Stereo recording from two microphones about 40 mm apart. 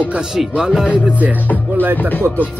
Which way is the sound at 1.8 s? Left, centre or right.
Right.